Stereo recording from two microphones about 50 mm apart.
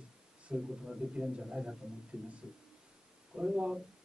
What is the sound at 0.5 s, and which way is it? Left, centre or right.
A man's voice, centre.